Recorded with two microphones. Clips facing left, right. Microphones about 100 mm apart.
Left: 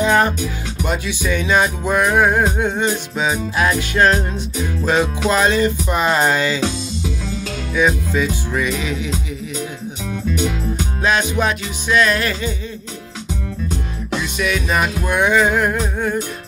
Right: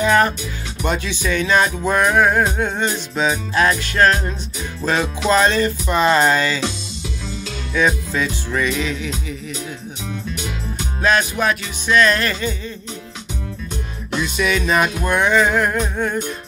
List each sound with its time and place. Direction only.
0.0 s music: 20° left (ahead or behind)
0.8 s speech: 10° left (ahead or behind)
7.7 s speech: 10° left (ahead or behind)
11.0 s speech: 20° left (ahead or behind)
14.1 s speech: centre (ahead or behind)